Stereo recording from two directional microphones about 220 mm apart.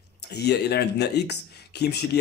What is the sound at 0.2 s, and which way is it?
Speech, 50° left (ahead or behind).